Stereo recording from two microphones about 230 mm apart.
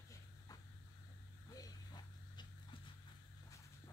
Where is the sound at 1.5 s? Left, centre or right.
Centre.